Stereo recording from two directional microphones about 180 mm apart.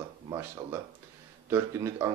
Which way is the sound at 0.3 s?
15° right (ahead or behind).